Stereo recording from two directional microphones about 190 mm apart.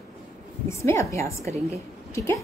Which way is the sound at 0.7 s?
15° left (ahead or behind).